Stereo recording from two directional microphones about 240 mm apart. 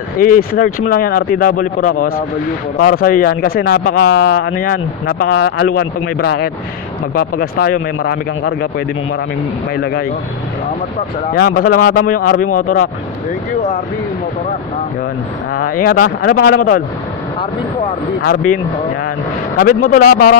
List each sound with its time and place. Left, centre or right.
0.2 s speech: left
11.3 s speech: left
15.5 s speech: left
18.2 s speech: left
19.6 s speech: left